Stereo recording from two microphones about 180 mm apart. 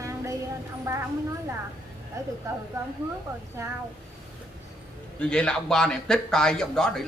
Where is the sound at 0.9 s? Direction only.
15° right (ahead or behind).